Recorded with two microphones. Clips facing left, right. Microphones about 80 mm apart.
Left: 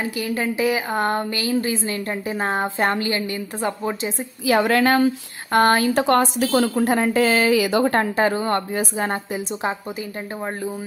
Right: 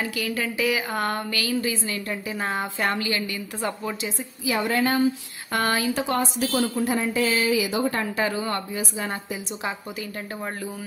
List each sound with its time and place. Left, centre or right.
0.0 s a woman's voice: left
4.5 s a woman's voice: left
5.5 s a woman's voice: left
5.9 s speech: left
6.9 s speech: left
8.0 s a woman's voice: left